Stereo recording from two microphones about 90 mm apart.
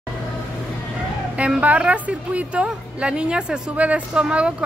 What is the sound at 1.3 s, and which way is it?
A woman's voice, 15° right (ahead or behind).